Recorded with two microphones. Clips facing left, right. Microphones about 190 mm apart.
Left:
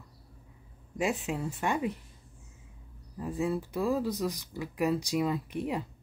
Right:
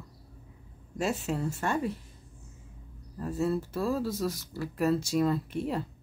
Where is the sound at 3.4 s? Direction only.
15° left (ahead or behind).